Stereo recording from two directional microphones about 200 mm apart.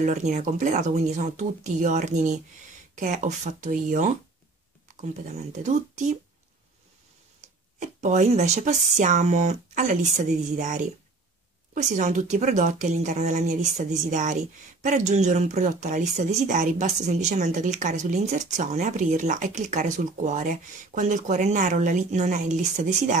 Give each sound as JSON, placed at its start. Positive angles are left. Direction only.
{"t": 0.0, "sound": "speech", "side_deg": -35}
{"t": 7.4, "sound": "speech", "side_deg": -40}